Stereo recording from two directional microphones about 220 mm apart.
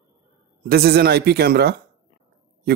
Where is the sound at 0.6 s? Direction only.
45° right (ahead or behind).